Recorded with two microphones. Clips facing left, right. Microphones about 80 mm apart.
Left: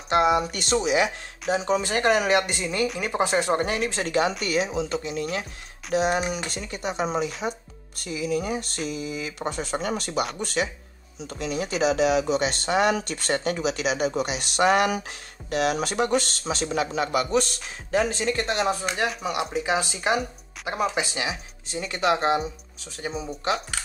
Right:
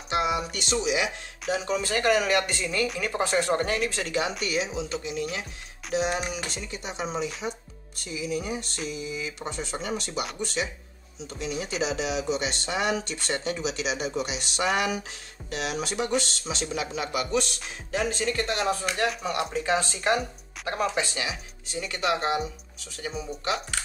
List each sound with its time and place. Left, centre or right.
0.1 s a sound: left
0.5 s speech: left
1.5 s speech: left
3.9 s speech: left
5.9 s speech: left
19.0 s speech: centre
21.1 s speech: left